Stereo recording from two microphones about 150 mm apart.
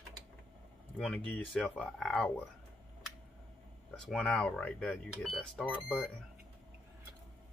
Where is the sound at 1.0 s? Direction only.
10° left (ahead or behind).